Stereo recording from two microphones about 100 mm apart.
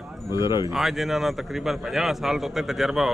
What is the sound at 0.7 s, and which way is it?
A man's voice, centre (ahead or behind).